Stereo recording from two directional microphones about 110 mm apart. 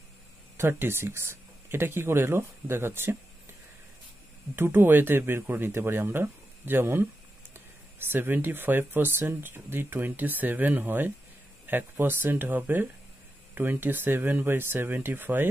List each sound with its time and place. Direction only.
0.6 s speech: 20° right (ahead or behind)
4.6 s speech: 20° right (ahead or behind)